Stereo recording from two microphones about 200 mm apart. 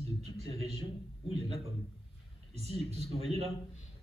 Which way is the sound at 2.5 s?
30° right (ahead or behind).